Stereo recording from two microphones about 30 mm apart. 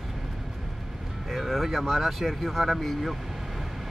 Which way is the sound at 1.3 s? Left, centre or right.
Centre.